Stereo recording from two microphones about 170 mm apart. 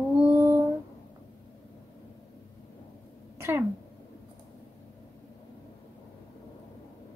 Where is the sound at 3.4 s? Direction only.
15° right (ahead or behind).